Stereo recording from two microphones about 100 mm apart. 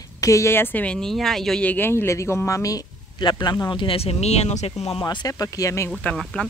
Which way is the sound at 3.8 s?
70° left (ahead or behind).